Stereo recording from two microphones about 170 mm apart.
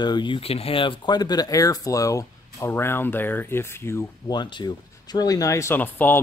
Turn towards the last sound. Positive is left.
turn(degrees=10)  # may be behind; listen again after turning